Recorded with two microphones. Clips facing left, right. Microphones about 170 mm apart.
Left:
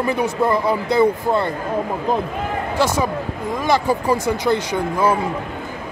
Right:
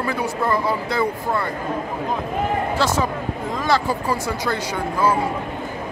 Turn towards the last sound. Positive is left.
turn(degrees=20)  # may be behind; listen again after turning